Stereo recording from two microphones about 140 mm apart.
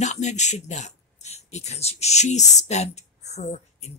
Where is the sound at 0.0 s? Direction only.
55° left (ahead or behind).